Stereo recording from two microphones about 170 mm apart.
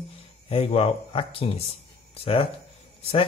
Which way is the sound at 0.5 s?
35° left (ahead or behind).